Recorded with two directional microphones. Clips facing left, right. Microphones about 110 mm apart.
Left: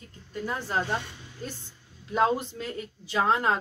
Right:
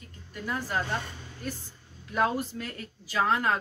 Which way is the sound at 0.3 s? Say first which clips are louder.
Left 1 dB; 30° left (ahead or behind).